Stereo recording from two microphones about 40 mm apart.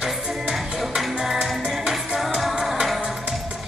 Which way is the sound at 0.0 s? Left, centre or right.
Centre.